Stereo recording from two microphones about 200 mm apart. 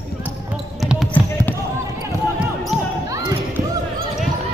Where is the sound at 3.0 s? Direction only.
15° right (ahead or behind).